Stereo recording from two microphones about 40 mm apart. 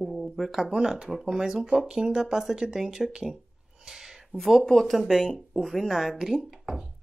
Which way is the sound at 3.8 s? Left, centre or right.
Centre.